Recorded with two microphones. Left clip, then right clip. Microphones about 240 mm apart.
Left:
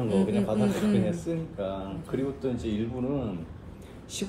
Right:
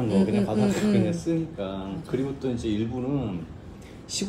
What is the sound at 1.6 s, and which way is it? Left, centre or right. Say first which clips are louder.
Speech: even; right.